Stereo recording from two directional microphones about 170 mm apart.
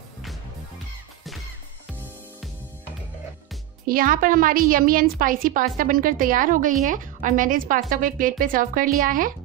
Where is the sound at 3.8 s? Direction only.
55° right (ahead or behind).